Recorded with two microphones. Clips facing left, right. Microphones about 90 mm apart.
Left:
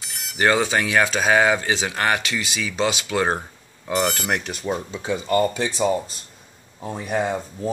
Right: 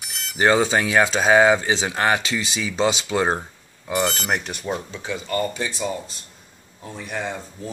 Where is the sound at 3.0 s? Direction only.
20° right (ahead or behind).